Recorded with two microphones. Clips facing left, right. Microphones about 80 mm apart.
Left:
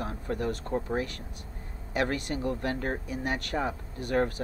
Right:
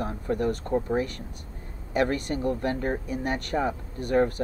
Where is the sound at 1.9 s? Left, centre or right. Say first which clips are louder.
Right 4 dB; right.